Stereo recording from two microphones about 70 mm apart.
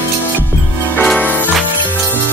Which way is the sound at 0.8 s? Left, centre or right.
Left.